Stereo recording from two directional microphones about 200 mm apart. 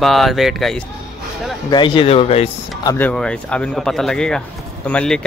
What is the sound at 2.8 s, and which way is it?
Speech, 10° left (ahead or behind).